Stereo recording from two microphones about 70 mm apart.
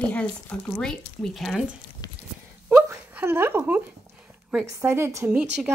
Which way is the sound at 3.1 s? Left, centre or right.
Right.